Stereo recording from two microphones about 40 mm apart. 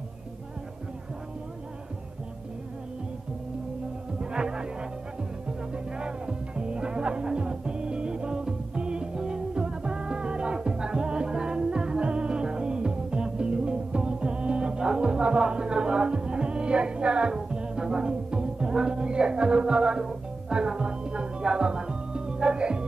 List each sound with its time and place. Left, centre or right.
4.2 s music: right
5.9 s music: right